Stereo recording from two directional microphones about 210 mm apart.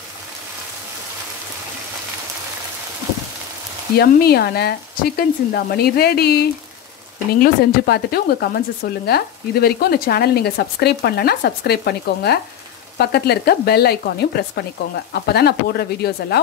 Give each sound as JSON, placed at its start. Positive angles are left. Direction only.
{"t": 4.0, "sound": "speech", "side_deg": 50}